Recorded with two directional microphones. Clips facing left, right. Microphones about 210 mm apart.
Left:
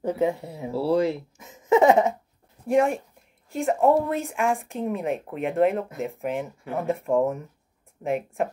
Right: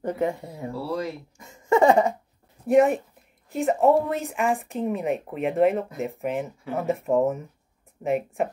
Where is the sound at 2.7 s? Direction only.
Centre (ahead or behind).